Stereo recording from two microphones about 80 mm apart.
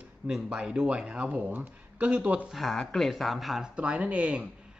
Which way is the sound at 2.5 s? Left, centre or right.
Centre.